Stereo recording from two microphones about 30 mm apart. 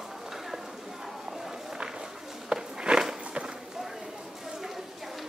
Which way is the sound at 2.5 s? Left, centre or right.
Right.